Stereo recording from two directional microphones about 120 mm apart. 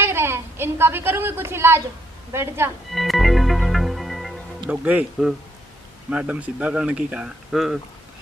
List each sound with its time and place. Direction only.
0.0 s a sound: 20° right (ahead or behind)
2.3 s a woman's voice: 20° right (ahead or behind)
2.9 s music: centre (ahead or behind)
4.6 s speech: 10° right (ahead or behind)